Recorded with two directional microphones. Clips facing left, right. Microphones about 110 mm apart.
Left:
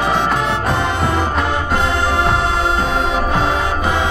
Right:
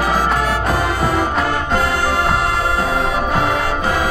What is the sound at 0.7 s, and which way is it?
Music, 25° left (ahead or behind).